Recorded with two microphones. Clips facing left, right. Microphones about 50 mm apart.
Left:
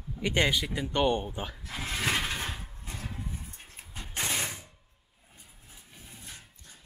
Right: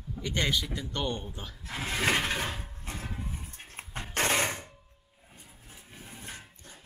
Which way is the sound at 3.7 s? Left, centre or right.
Right.